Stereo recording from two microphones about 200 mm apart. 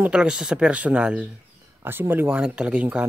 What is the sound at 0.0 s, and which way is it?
Speech, 5° right (ahead or behind).